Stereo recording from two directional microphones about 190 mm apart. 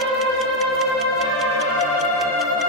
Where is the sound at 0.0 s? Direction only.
Centre (ahead or behind).